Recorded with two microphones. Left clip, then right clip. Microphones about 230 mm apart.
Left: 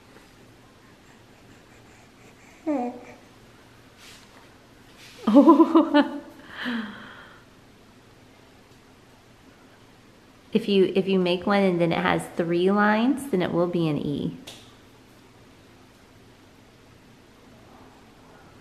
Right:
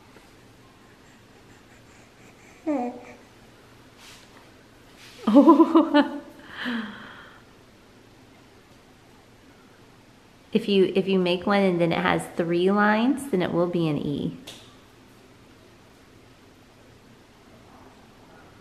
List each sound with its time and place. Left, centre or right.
2.6 s babbling: centre
5.0 s a sound: centre
10.5 s a woman's voice: centre